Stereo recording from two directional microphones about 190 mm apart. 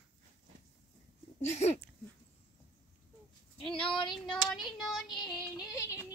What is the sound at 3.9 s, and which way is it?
Child singing, 25° left (ahead or behind).